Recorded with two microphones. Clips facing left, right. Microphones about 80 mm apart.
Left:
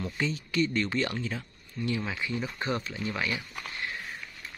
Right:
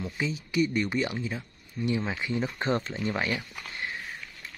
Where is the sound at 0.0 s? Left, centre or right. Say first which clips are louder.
Even; centre; by 3.3 s right.